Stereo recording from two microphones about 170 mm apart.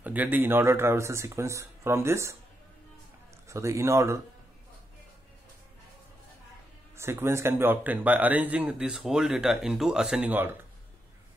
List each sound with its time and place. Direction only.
0.0 s a man's voice: 10° right (ahead or behind)
3.4 s a man's voice: 15° right (ahead or behind)
7.0 s a man's voice: 15° right (ahead or behind)